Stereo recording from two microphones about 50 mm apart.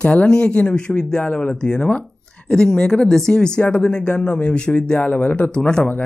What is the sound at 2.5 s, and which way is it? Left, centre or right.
Speech, centre.